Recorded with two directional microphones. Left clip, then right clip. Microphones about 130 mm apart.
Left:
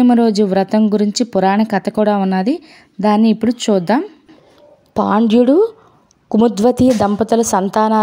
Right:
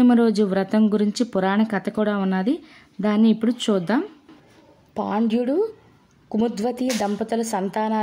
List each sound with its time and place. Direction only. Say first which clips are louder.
0.0 s speech: left 5 dB; 40° left (ahead or behind)
4.9 s a woman's voice: left 10 dB; 70° left (ahead or behind)
5.3 s a woman's voice: left 11 dB; 60° left (ahead or behind)